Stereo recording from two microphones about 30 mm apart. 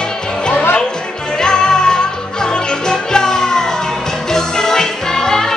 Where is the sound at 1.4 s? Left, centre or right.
Left.